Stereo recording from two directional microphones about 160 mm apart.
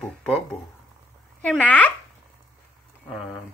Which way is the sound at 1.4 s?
10° left (ahead or behind).